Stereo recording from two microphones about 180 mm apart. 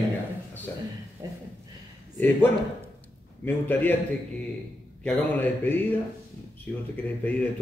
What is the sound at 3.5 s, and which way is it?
Speech, 10° left (ahead or behind).